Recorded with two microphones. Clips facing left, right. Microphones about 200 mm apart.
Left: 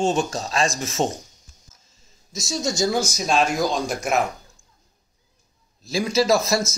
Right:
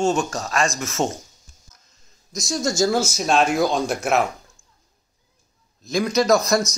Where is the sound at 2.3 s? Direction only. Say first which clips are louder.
Right 2 dB; centre (ahead or behind).